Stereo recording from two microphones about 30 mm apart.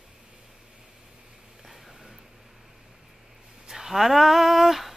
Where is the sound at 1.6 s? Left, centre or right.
Centre.